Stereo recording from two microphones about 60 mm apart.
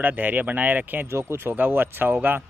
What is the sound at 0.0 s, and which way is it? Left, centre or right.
Speech, right.